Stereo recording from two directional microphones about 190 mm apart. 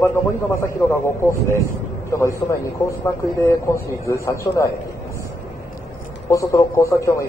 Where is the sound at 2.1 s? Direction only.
15° left (ahead or behind).